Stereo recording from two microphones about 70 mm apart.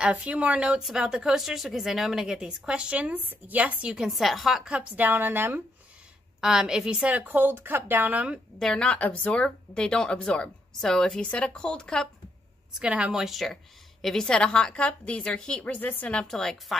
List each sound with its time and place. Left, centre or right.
0.0 s speech: centre
3.9 s a woman's voice: centre
4.6 s a woman's voice: right
6.4 s a woman's voice: centre
8.5 s speech: centre
12.7 s speech: centre; by 16.2 s left
16.2 s speech: centre